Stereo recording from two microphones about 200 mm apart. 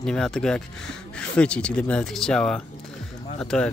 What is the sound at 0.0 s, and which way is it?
Speech, 5° left (ahead or behind).